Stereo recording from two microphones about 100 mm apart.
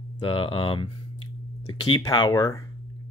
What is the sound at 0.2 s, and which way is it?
Speech, 60° left (ahead or behind).